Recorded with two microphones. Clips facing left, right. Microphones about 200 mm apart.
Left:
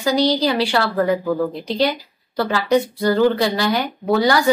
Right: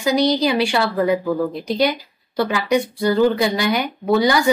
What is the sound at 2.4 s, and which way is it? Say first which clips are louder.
Speech: left 1 dB; 15° right (ahead or behind).